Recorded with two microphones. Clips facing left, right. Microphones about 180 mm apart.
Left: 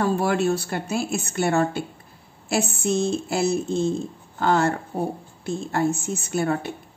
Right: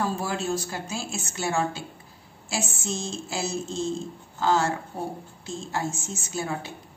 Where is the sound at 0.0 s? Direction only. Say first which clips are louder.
Left 7 dB; 65° left (ahead or behind).